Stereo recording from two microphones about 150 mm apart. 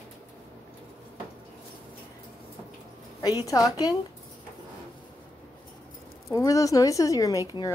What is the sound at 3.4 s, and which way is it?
Speech, 25° left (ahead or behind).